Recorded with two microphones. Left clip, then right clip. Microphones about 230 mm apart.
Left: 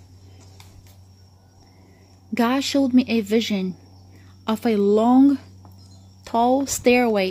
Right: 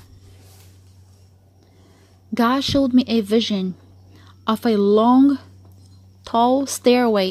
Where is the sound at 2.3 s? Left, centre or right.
Centre.